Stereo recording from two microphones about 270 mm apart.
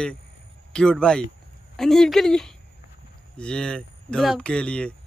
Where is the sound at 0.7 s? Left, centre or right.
Centre.